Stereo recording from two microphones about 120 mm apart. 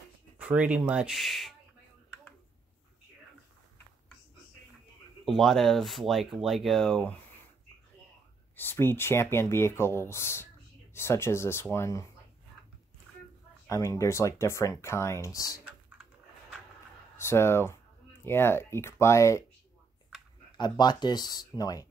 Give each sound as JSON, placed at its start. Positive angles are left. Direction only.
{"t": 0.4, "sound": "speech", "side_deg": -10}
{"t": 5.2, "sound": "speech", "side_deg": 0}
{"t": 8.5, "sound": "speech", "side_deg": 20}
{"t": 13.7, "sound": "speech", "side_deg": 25}
{"t": 15.6, "sound": "typing", "side_deg": -10}
{"t": 17.2, "sound": "speech", "side_deg": 20}
{"t": 20.5, "sound": "speech", "side_deg": 40}